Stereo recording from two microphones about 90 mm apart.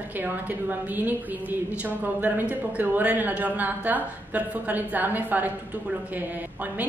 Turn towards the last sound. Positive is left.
turn(degrees=-20)  # may be behind; listen again after turning